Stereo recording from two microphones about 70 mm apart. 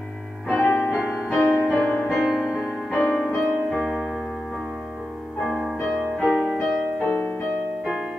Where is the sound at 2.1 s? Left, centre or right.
Centre.